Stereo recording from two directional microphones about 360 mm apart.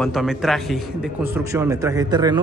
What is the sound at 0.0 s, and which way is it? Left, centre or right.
A man's voice, centre.